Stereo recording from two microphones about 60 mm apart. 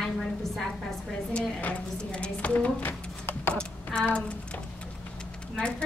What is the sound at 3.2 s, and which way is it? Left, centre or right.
Typing, left.